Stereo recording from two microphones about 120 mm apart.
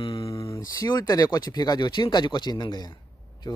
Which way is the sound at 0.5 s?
30° left (ahead or behind).